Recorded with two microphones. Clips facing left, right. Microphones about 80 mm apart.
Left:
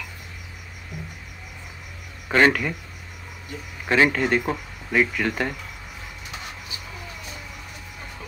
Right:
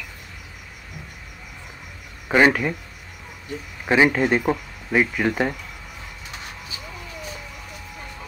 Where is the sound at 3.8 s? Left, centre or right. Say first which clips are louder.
Right 2 dB; centre.